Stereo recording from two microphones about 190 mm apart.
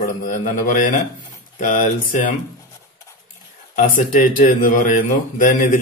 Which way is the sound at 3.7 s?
45° left (ahead or behind).